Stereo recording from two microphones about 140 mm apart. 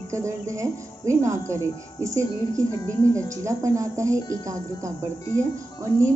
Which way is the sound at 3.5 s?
20° right (ahead or behind).